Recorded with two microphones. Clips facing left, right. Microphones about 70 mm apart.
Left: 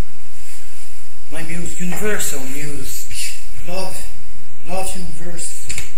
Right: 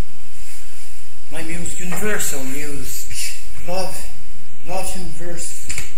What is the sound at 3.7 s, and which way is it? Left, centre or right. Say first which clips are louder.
A man's voice: right 1 dB; centre.